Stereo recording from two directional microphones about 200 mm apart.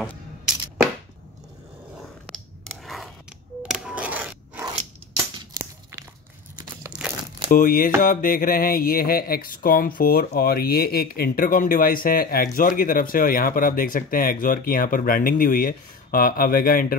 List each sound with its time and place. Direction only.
2.2 s biting: centre (ahead or behind)
3.6 s scrape: 5° right (ahead or behind)
6.9 s crumpling: 5° right (ahead or behind)
7.5 s speech: 45° left (ahead or behind)